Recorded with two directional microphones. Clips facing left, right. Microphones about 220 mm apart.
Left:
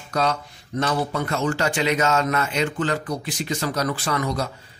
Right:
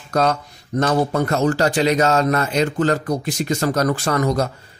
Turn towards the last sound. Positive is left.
turn(degrees=-45)  # may be behind; listen again after turning